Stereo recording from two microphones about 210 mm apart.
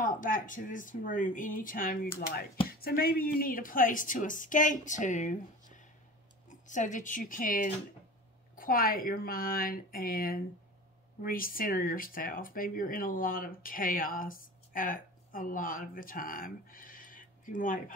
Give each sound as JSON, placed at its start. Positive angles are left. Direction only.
{"t": 0.0, "sound": "speech", "side_deg": 40}
{"t": 6.5, "sound": "speech", "side_deg": 35}